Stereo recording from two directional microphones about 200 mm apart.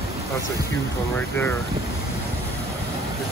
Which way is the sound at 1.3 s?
10° left (ahead or behind).